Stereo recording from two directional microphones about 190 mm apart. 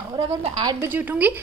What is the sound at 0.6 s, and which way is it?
Speech, 10° right (ahead or behind).